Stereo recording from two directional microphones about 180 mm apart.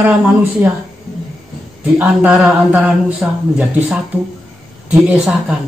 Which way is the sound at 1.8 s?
10° right (ahead or behind).